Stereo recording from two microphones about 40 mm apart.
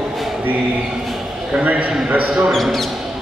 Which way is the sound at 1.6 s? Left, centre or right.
Right.